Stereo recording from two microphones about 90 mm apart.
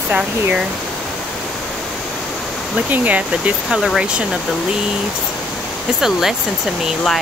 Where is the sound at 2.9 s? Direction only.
15° right (ahead or behind).